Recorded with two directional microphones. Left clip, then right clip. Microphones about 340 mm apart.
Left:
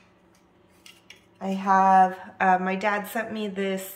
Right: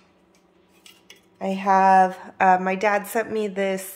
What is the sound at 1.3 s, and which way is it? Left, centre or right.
A woman's voice, right.